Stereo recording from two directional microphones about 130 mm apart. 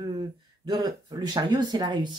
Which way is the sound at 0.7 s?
35° right (ahead or behind).